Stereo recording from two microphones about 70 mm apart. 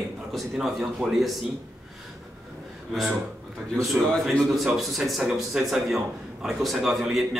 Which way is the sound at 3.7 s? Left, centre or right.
Centre.